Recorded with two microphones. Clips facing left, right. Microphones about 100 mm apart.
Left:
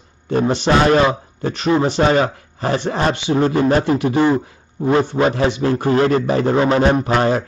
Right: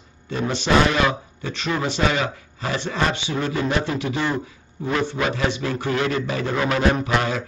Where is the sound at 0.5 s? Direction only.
50° left (ahead or behind).